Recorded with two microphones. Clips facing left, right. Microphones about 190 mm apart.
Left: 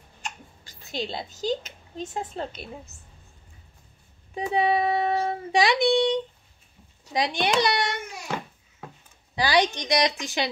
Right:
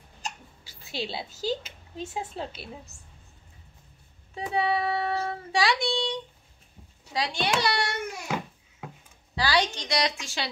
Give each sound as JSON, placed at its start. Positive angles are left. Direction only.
{"t": 0.7, "sound": "speech", "side_deg": -5}
{"t": 4.4, "sound": "child singing", "side_deg": 20}
{"t": 7.1, "sound": "a child's voice", "side_deg": 20}
{"t": 9.3, "sound": "child singing", "side_deg": 20}